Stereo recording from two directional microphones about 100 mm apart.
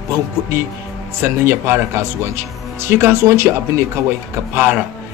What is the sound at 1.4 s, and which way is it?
Speech, 25° right (ahead or behind).